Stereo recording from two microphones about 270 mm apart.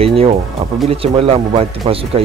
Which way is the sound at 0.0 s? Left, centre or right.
Right.